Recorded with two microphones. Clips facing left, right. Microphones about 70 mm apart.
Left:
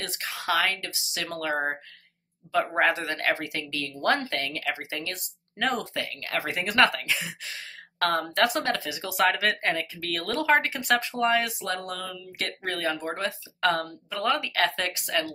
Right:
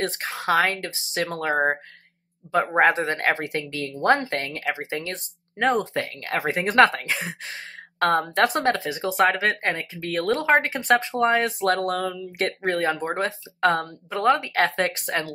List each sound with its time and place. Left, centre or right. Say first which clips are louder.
0.0 s speech: right 6 dB; right
11.6 s a sound: right 9 dB; right
12.1 s speech: right 8 dB; right